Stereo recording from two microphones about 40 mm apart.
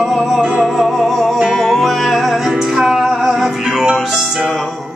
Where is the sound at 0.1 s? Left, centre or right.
Centre.